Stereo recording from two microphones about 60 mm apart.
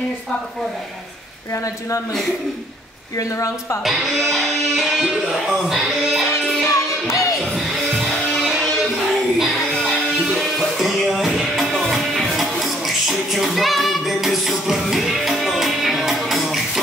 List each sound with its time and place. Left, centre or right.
3.2 s speech: left
3.8 s music: centre
5.0 s speech: centre
6.7 s music: left
7.2 s music: centre